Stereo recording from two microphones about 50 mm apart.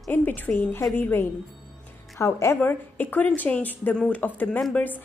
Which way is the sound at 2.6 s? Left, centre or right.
Left.